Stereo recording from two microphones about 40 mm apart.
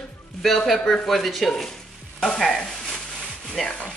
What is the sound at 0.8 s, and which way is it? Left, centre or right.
Sizzle, centre.